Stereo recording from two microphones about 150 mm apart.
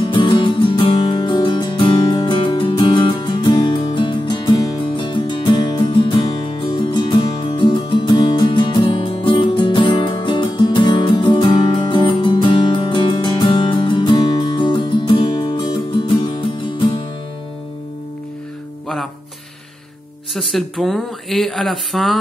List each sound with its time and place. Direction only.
0.1 s music: 35° left (ahead or behind)
20.3 s speech: centre (ahead or behind)